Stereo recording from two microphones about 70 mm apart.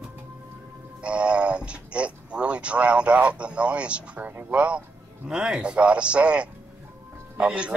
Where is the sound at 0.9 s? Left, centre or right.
Centre.